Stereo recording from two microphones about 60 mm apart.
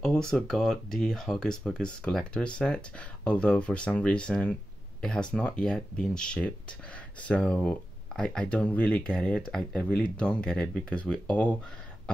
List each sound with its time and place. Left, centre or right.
0.0 s speech: centre